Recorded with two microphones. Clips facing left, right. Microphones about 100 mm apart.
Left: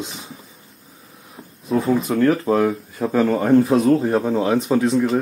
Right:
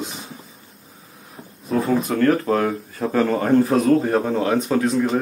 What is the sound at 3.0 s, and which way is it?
Speech, centre (ahead or behind).